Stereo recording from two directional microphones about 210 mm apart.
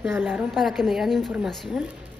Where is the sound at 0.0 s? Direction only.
5° right (ahead or behind).